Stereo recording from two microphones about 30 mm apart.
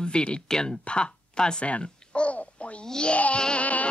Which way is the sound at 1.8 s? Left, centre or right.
Left.